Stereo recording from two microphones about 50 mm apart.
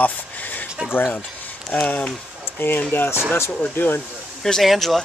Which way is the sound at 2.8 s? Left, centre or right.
Left.